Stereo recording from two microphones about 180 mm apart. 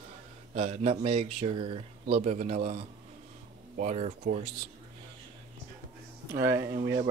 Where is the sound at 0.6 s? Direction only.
35° right (ahead or behind).